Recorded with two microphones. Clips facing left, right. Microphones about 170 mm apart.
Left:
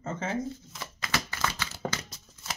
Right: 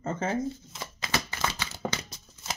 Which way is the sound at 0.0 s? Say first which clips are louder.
Right 3 dB; 40° right (ahead or behind).